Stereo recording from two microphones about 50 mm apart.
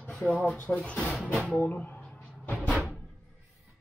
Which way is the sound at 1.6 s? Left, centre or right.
Left.